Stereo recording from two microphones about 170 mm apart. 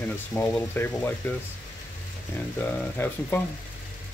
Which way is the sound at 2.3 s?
10° left (ahead or behind).